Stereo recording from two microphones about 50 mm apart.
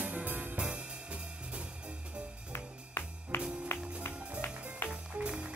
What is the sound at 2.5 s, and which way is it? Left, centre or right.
Music, left.